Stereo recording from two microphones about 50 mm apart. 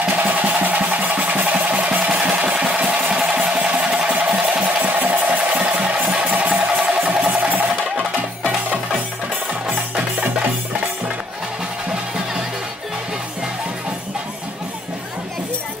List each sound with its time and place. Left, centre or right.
0.2 s music: right
4.2 s a sound: right
7.2 s music: right
9.7 s music: right